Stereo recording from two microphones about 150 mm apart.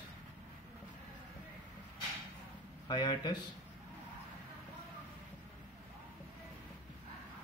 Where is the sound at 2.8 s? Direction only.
30° left (ahead or behind).